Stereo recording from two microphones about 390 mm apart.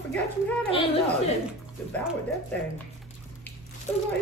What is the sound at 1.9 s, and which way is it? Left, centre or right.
Speech, centre.